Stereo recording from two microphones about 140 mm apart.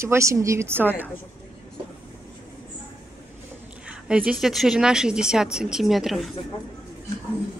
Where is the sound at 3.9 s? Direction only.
10° right (ahead or behind).